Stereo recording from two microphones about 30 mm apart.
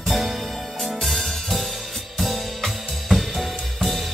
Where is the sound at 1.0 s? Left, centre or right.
Centre.